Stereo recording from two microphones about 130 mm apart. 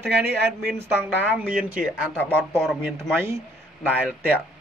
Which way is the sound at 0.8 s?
15° right (ahead or behind).